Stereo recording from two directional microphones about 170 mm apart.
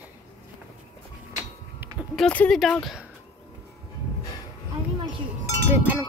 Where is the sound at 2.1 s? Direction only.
5° left (ahead or behind).